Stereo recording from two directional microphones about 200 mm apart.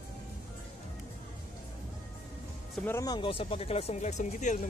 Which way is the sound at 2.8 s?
10° left (ahead or behind).